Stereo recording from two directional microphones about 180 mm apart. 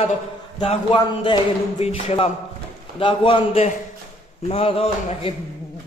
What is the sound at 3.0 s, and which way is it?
Speech, 30° left (ahead or behind).